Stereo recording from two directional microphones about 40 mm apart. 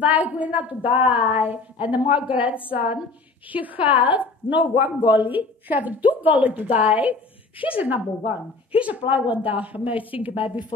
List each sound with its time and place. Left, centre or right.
0.0 s a woman's voice: right